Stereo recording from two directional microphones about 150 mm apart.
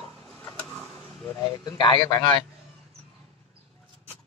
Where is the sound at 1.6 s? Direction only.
30° left (ahead or behind).